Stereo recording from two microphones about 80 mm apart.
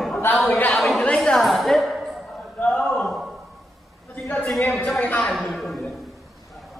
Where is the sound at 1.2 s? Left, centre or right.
Centre.